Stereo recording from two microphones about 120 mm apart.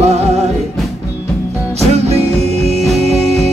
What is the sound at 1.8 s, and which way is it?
Music, 60° right (ahead or behind).